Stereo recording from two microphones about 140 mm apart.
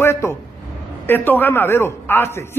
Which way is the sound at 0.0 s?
20° left (ahead or behind).